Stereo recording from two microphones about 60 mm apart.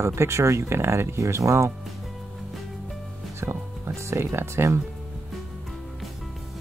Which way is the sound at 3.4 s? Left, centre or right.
Right.